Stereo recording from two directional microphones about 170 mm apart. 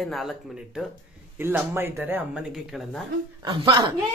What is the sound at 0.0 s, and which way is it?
Speech, centre (ahead or behind).